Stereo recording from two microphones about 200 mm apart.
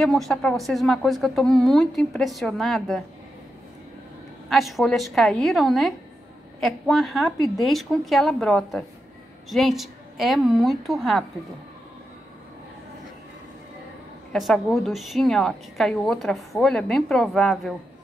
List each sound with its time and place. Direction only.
0.0 s a woman's voice: centre (ahead or behind)
4.5 s a woman's voice: centre (ahead or behind)
14.3 s a woman's voice: centre (ahead or behind)